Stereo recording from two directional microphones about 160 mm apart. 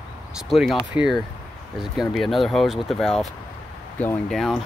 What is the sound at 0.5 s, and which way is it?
Speech, centre (ahead or behind).